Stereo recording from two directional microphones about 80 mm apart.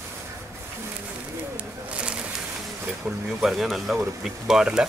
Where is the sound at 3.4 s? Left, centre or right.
Centre.